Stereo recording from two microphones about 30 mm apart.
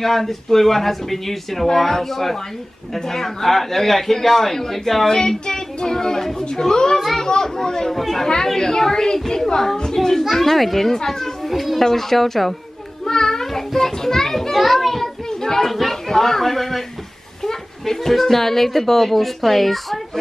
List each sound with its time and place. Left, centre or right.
0.0 s a child's voice: centre
5.0 s speech: centre
7.0 s children playing: centre
7.2 s a child's voice: left
7.9 s a child's voice: centre
8.5 s speech: centre
10.0 s a child's voice: centre
10.9 s a child's voice: centre
11.4 s a child's voice: centre
13.0 s children playing: centre
15.2 s a sound: centre
15.7 s a sound: centre
16.1 s a child's voice: centre